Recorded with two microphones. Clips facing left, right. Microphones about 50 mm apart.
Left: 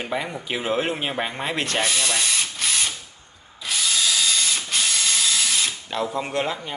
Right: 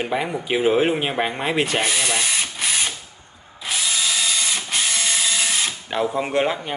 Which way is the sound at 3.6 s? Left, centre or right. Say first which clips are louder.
Even; centre.